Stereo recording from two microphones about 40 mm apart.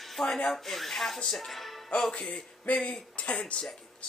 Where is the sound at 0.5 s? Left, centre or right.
Centre.